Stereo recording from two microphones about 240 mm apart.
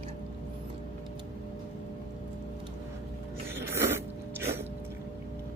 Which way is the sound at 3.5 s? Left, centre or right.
Centre.